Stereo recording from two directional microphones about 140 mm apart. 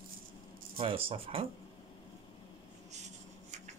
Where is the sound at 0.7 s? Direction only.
40° right (ahead or behind).